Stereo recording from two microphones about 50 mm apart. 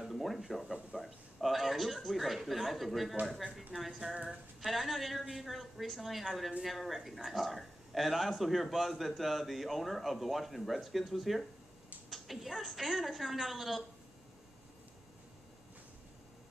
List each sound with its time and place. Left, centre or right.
0.0 s a man's voice: centre
4.2 s a sound: right
4.6 s a man's voice: centre